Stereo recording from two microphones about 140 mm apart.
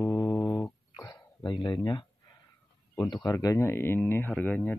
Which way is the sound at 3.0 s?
30° left (ahead or behind).